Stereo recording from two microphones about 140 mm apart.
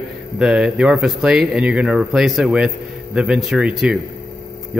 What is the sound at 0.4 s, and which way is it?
Speech, 5° right (ahead or behind).